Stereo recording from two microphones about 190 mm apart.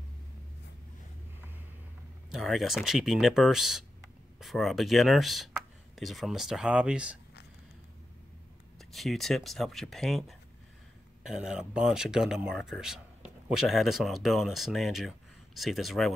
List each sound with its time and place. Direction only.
2.3 s speech: centre (ahead or behind)
8.7 s speech: centre (ahead or behind)